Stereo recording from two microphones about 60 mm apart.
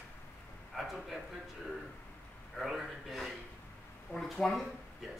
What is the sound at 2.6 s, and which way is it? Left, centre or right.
A man's voice, centre.